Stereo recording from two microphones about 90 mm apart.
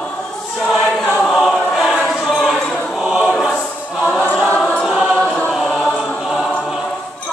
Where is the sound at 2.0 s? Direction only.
5° left (ahead or behind).